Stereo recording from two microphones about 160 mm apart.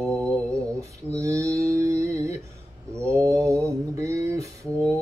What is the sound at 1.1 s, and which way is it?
Mantra, 20° right (ahead or behind).